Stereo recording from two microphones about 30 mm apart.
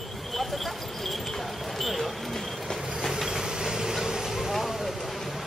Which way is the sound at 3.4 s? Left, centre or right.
Right.